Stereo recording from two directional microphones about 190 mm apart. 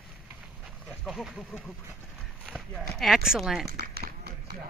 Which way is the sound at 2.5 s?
Centre (ahead or behind).